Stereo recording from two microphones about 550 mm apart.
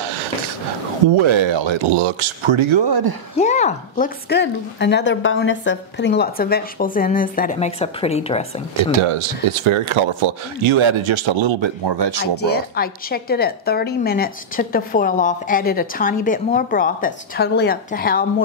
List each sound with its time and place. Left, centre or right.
1.1 s speech: right
3.3 s a woman's voice: centre
9.7 s speech: right
12.4 s a woman's voice: centre